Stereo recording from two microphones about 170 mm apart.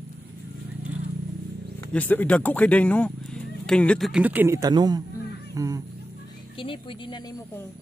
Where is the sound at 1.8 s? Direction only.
10° left (ahead or behind); by 4.6 s 10° right (ahead or behind).